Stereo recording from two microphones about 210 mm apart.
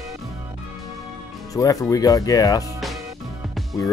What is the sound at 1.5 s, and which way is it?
Speech, 15° left (ahead or behind).